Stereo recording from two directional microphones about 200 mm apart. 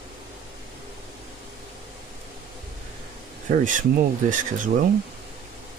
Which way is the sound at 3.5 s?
40° right (ahead or behind).